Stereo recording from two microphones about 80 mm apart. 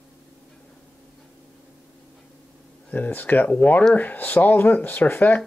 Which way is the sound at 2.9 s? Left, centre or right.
Left.